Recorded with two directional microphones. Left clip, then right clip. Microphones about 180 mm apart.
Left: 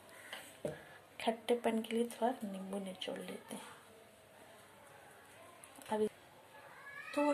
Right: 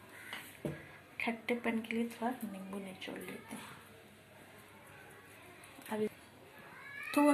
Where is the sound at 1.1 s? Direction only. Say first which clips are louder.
Left 2 dB; 55° left (ahead or behind).